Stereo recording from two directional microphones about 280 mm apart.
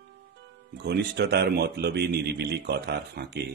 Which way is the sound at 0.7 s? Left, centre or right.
Right.